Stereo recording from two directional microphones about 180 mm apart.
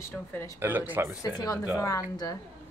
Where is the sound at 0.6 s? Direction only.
10° right (ahead or behind).